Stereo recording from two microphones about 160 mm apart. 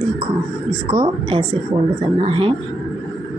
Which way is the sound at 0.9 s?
35° right (ahead or behind).